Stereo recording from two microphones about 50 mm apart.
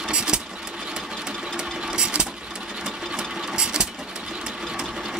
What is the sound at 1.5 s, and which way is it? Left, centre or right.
Sewing machine, centre.